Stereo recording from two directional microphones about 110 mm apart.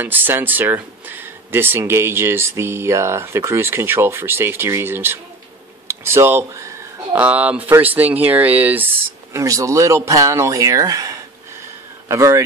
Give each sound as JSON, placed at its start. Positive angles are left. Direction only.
{"t": 0.0, "sound": "speech", "side_deg": -20}
{"t": 5.9, "sound": "a sound", "side_deg": -20}
{"t": 7.2, "sound": "speech", "side_deg": -15}
{"t": 9.3, "sound": "speech", "side_deg": -30}